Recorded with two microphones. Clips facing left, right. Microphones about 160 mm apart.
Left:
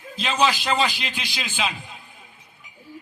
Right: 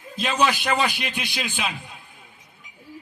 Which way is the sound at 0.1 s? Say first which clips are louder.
Even; 60° right (ahead or behind).